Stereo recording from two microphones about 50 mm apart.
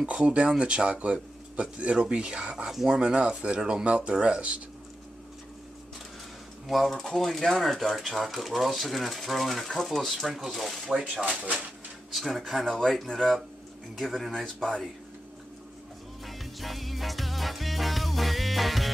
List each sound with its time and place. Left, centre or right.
0.0 s speech: right
6.7 s speech: centre
12.6 s speech: centre
13.9 s speech: centre
16.3 s music: centre